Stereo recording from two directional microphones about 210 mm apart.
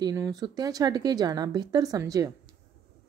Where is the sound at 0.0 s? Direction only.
15° right (ahead or behind).